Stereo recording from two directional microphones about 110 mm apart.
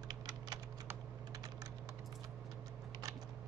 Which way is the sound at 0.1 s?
35° right (ahead or behind).